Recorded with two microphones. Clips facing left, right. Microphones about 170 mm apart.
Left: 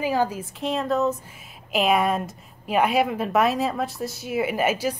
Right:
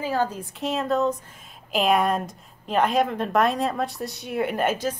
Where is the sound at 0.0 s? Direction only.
10° left (ahead or behind).